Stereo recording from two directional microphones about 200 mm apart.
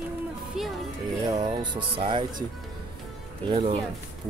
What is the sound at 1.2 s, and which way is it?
Music, 20° right (ahead or behind).